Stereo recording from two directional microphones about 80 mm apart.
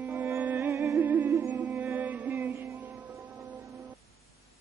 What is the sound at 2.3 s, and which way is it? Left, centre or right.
Music, right.